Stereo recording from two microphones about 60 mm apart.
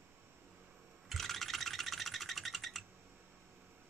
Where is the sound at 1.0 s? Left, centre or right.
Centre.